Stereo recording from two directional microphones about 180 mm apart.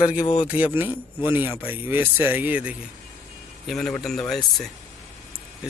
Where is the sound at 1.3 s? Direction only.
10° right (ahead or behind).